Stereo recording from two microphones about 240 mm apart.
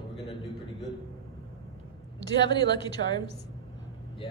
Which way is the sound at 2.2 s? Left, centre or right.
Centre.